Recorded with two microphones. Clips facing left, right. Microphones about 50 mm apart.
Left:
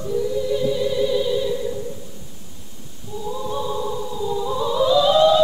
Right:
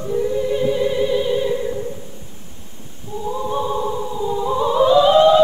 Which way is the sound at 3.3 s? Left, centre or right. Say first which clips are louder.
Right 4 dB; right.